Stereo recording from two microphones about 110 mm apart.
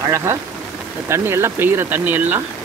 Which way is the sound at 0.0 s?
25° right (ahead or behind).